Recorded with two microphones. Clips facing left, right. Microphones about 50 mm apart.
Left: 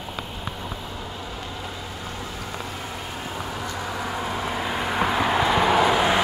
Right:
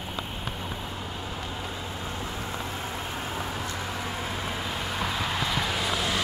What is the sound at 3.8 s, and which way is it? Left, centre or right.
Vehicle, left.